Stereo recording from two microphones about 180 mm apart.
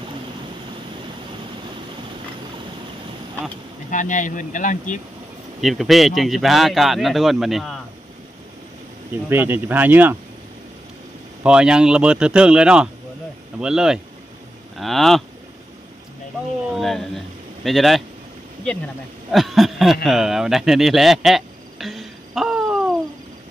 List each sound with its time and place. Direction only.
3.9 s speech: 45° left (ahead or behind)
5.6 s speech: centre (ahead or behind)
9.3 s speech: 10° right (ahead or behind)
11.4 s speech: 5° right (ahead or behind)
16.7 s speech: centre (ahead or behind)
19.3 s speech: centre (ahead or behind)